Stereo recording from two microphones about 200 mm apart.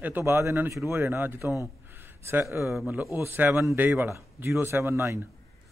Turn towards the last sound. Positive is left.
turn(degrees=-15)  # may be behind; listen again after turning